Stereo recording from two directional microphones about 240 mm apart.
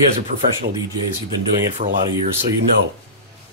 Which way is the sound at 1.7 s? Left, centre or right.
Right.